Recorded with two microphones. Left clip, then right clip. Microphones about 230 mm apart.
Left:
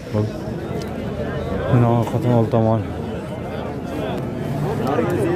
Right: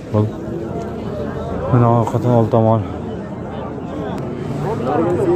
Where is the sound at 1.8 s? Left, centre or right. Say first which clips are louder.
Right 4 dB; centre.